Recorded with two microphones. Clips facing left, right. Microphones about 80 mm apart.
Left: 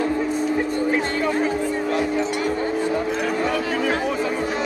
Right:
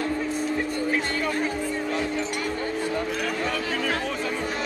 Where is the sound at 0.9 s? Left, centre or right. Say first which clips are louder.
Left 5 dB; centre.